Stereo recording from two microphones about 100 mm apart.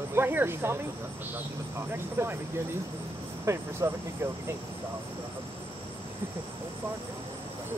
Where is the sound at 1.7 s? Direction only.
25° right (ahead or behind).